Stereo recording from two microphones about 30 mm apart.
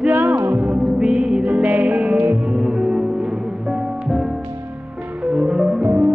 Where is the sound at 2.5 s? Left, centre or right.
Centre.